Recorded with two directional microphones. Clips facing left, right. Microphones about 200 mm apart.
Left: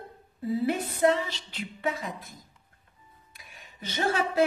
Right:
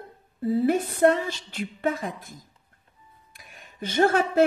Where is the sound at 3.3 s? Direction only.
50° right (ahead or behind).